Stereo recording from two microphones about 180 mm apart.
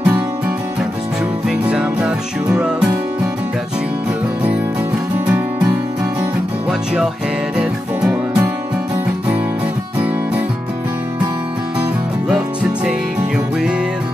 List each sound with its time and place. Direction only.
1.5 s music: 5° right (ahead or behind)
7.5 s music: 5° right (ahead or behind)